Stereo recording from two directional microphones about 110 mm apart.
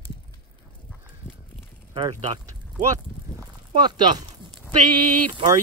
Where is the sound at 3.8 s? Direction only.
40° right (ahead or behind).